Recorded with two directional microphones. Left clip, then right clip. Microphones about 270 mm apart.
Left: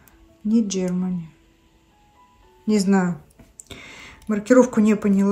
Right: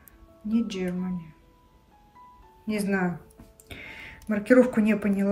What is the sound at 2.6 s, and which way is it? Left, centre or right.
A woman's voice, centre.